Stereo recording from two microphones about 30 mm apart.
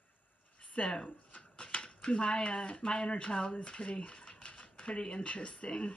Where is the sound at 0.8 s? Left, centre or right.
Left.